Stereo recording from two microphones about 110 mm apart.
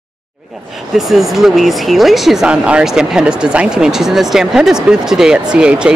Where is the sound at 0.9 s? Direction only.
5° right (ahead or behind).